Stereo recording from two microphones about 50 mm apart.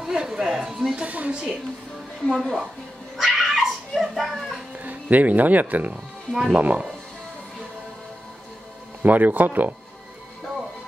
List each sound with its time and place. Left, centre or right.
0.0 s a sound: centre
0.9 s a woman's voice: right
2.2 s a woman's voice: centre
3.2 s cat: centre
4.7 s speech: right
9.0 s speech: right